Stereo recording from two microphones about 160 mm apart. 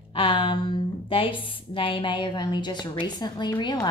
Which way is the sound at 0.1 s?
35° left (ahead or behind).